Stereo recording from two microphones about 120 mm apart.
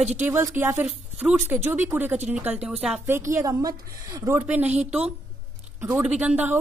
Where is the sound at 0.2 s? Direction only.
20° right (ahead or behind).